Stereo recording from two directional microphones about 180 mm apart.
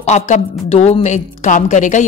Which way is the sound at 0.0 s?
40° left (ahead or behind).